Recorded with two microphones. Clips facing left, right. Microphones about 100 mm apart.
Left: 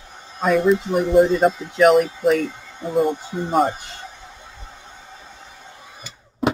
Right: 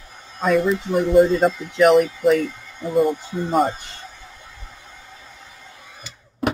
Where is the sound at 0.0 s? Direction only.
25° left (ahead or behind).